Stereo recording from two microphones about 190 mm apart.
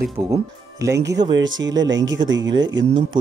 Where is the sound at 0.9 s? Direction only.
65° right (ahead or behind).